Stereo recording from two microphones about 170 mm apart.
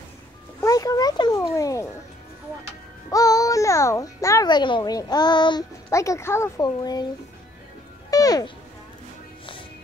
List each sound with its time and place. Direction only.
0.6 s a sound: 20° left (ahead or behind)
3.1 s a child's voice: 20° left (ahead or behind)
8.1 s music: 20° left (ahead or behind)